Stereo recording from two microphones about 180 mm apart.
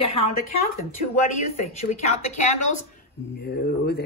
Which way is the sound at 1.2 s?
40° left (ahead or behind).